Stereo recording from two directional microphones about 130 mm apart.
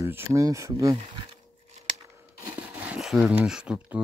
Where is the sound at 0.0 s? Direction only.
20° right (ahead or behind).